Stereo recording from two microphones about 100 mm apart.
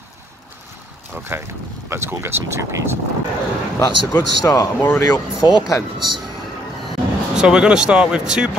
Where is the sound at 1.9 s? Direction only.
25° right (ahead or behind).